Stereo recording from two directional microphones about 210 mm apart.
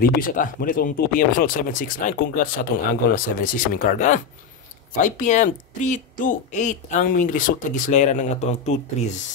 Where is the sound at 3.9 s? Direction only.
35° left (ahead or behind).